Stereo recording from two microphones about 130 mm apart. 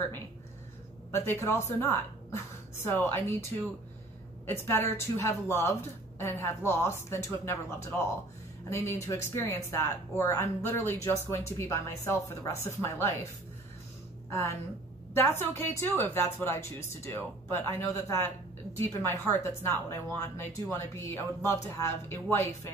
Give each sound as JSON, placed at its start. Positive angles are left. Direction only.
{"t": 1.1, "sound": "a woman's voice", "side_deg": 20}
{"t": 4.5, "sound": "speech", "side_deg": 20}
{"t": 15.1, "sound": "a woman's voice", "side_deg": 20}